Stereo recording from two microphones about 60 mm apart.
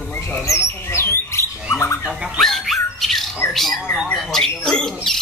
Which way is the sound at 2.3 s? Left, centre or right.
Centre.